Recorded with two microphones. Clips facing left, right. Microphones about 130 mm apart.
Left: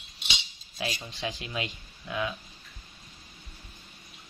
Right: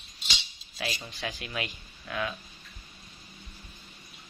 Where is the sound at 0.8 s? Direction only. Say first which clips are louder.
Left 1 dB; 20° left (ahead or behind).